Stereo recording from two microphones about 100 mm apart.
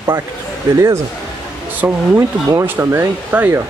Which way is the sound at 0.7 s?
30° right (ahead or behind).